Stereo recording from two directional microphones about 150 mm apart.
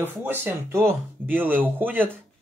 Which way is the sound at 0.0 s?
15° right (ahead or behind).